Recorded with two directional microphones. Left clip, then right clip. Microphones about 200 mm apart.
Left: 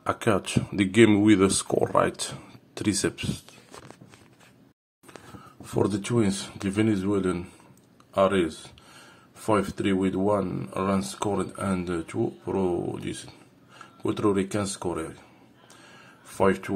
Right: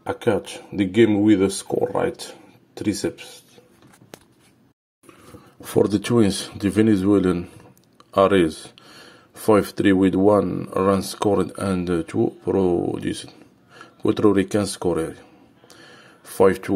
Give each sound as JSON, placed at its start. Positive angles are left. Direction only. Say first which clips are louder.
{"t": 0.2, "sound": "speech", "louder": "right 3 dB", "side_deg": 5}
{"t": 5.6, "sound": "speech", "louder": "right 7 dB", "side_deg": -30}
{"t": 16.3, "sound": "speech", "louder": "right 7 dB", "side_deg": -25}